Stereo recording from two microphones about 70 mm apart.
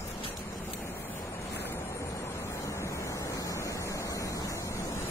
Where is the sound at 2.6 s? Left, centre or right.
Left.